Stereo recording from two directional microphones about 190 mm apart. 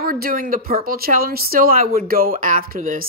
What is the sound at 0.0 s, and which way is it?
Speech, 50° right (ahead or behind).